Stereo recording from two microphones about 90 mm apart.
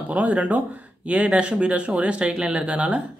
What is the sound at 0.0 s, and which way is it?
Speech, 15° right (ahead or behind).